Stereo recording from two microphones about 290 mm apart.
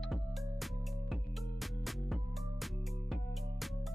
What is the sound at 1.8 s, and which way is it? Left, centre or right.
Music, centre.